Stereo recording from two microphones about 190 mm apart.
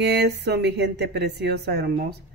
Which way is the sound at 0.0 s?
60° right (ahead or behind).